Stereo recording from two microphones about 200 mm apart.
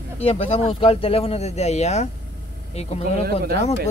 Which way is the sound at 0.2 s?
30° left (ahead or behind).